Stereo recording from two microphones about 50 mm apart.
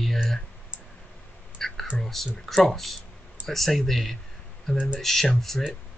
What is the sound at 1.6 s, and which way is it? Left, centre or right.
Whispering, centre.